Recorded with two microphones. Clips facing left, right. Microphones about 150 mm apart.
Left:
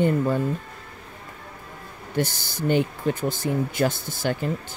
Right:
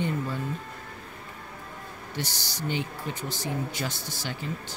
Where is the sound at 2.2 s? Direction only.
50° left (ahead or behind).